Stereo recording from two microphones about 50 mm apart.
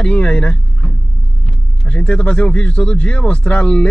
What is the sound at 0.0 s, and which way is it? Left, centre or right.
Speech, centre.